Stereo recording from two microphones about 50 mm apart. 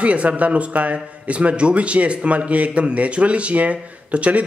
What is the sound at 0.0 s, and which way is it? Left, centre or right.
Speech, right.